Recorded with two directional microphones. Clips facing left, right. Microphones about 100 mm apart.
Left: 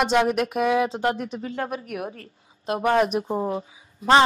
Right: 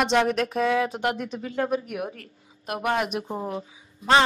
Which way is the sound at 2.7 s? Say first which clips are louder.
Left 5 dB; 30° left (ahead or behind).